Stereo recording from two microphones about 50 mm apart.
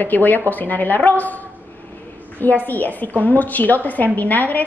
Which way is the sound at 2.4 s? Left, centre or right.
Left.